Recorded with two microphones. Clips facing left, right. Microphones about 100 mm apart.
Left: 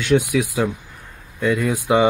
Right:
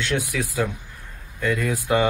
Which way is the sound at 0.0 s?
15° left (ahead or behind).